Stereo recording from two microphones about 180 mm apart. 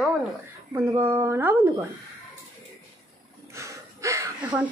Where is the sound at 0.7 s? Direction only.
15° right (ahead or behind).